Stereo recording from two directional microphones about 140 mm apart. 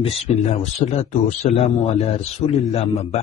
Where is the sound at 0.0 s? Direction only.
45° left (ahead or behind).